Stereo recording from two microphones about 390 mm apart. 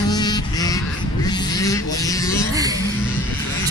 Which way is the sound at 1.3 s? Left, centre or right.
Centre.